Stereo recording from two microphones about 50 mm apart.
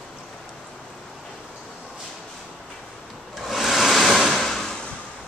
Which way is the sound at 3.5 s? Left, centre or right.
Centre.